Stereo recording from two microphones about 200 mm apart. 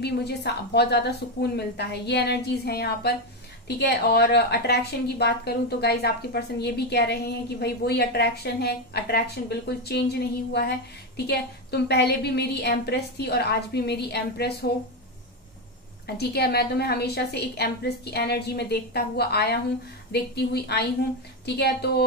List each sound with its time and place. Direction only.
0.0 s speech: 55° left (ahead or behind)
16.2 s speech: 55° left (ahead or behind)